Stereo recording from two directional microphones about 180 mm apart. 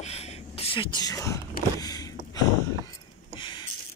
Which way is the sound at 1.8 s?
20° left (ahead or behind).